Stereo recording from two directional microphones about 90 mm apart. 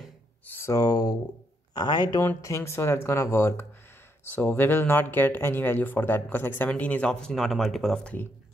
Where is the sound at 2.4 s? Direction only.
35° left (ahead or behind); by 8.0 s centre (ahead or behind).